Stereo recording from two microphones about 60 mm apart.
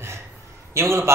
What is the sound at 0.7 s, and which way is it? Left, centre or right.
Speech, right.